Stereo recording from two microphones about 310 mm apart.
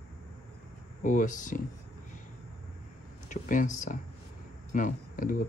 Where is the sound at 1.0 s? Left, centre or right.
Left.